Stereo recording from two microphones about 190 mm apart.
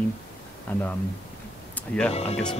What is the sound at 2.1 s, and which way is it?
Speech, 30° left (ahead or behind).